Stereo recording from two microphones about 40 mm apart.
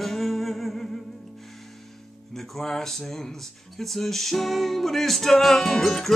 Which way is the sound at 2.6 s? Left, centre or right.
Centre.